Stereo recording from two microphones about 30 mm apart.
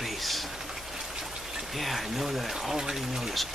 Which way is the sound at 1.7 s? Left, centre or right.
Centre.